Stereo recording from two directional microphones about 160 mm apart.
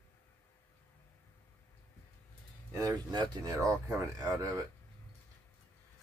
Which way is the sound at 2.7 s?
25° right (ahead or behind).